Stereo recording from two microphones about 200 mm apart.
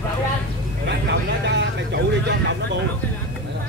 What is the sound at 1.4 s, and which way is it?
Vehicle, 60° right (ahead or behind).